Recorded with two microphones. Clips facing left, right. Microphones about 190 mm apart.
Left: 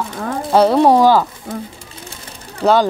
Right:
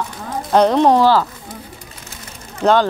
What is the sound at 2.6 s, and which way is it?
Speech, 5° left (ahead or behind).